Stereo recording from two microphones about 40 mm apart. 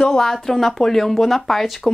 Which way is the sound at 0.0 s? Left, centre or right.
Centre.